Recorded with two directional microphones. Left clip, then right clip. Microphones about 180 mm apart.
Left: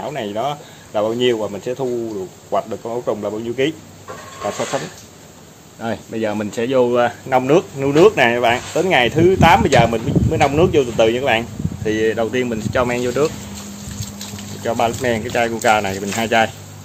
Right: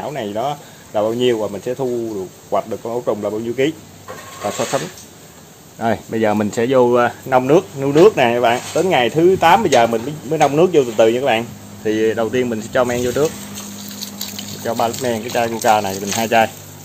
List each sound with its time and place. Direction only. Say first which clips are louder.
0.0 s speech: even; 10° right (ahead or behind)
4.7 s speech: right 2 dB; 25° right (ahead or behind)
5.8 s speech: right 5 dB; 35° right (ahead or behind); by 13.3 s 5° right (ahead or behind)
14.1 s speech: right 3 dB; 5° left (ahead or behind)